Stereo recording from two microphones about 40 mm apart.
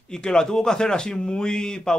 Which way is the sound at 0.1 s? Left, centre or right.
Centre.